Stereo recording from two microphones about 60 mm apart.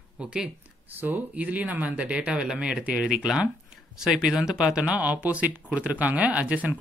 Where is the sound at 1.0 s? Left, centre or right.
Right.